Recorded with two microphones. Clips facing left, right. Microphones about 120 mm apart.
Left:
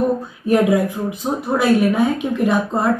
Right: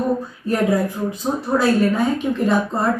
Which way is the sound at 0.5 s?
15° left (ahead or behind).